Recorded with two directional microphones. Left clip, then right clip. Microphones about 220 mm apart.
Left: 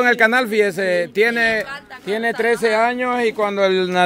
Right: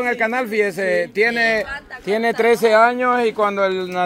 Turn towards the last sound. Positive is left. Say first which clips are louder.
# left 3 dB
turn(degrees=35)  # may be behind; listen again after turning